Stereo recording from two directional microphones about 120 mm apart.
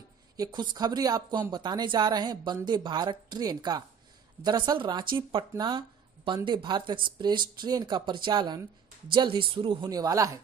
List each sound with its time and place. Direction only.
0.4 s speech: 35° right (ahead or behind)
9.8 s speech: 30° right (ahead or behind)